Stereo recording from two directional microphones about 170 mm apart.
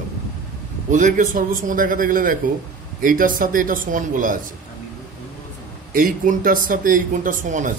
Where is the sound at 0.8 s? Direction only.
45° right (ahead or behind).